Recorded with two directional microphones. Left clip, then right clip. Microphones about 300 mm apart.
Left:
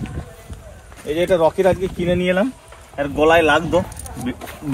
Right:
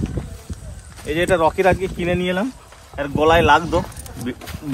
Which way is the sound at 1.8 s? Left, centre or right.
Centre.